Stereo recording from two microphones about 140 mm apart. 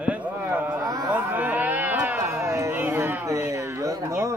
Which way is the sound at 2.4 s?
20° right (ahead or behind).